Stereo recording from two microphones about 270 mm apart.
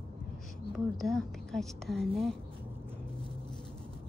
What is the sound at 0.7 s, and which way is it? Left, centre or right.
A woman's voice, centre.